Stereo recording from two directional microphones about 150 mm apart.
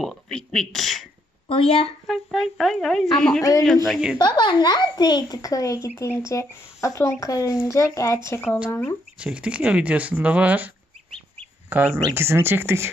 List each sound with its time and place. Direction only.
0.0 s speech: 5° left (ahead or behind)
1.5 s a woman's voice: 40° left (ahead or behind)
2.0 s speech: centre (ahead or behind)
4.2 s speech: 30° left (ahead or behind)
8.4 s speech: centre (ahead or behind)
8.6 s speech: 15° left (ahead or behind)
9.2 s speech: 5° right (ahead or behind)
11.7 s speech: 15° right (ahead or behind)